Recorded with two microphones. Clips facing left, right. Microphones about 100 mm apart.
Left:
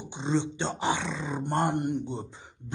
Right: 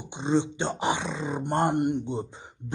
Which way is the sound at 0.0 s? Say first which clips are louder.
Right 3 dB; 15° right (ahead or behind).